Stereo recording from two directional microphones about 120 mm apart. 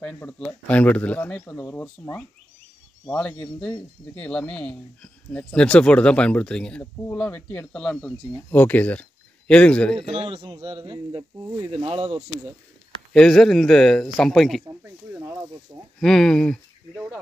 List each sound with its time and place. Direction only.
0.0 s speech: 10° left (ahead or behind)
10.2 s speech: 40° right (ahead or behind)
13.1 s speech: 5° left (ahead or behind)
16.0 s speech: 5° left (ahead or behind)